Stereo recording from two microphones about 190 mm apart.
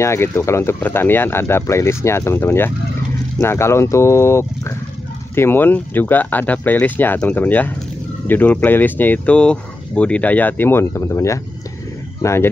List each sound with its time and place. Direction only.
0.0 s speech: 15° left (ahead or behind)